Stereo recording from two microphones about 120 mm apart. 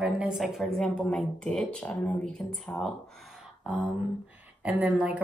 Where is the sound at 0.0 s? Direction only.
5° right (ahead or behind).